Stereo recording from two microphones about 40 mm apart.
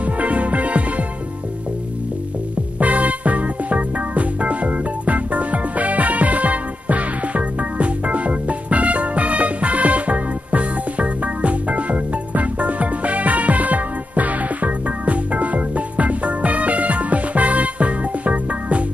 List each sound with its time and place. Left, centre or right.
0.0 s music: right
2.8 s music: right